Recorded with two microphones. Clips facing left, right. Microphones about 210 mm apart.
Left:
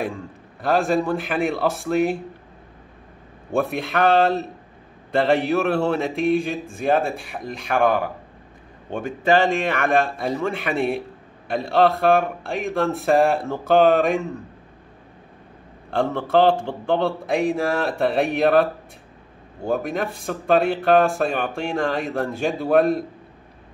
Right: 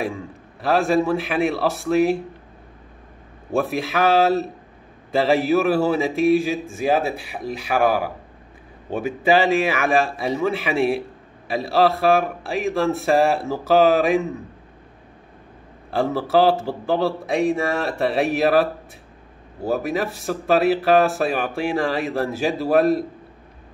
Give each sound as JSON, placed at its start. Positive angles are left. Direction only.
{"t": 0.0, "sound": "speech", "side_deg": 0}
{"t": 3.5, "sound": "speech", "side_deg": 0}
{"t": 15.9, "sound": "speech", "side_deg": -5}